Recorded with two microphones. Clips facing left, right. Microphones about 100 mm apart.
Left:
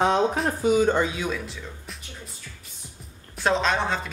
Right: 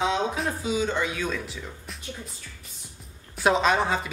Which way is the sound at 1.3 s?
Centre (ahead or behind).